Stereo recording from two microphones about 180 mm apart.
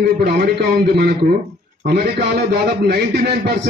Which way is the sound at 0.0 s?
60° right (ahead or behind).